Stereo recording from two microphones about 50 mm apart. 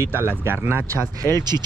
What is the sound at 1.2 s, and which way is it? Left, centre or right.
Speech, left.